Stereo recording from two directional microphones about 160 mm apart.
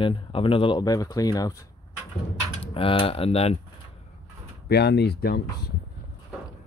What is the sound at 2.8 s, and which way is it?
Speech, 35° left (ahead or behind).